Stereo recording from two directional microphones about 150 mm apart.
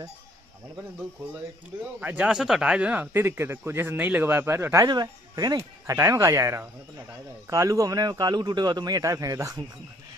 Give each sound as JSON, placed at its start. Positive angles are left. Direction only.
{"t": 2.0, "sound": "a man's voice", "side_deg": -10}